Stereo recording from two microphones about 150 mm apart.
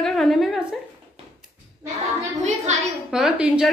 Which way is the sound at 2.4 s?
50° right (ahead or behind).